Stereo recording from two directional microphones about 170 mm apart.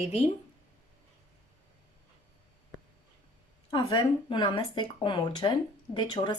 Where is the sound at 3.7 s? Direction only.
25° left (ahead or behind).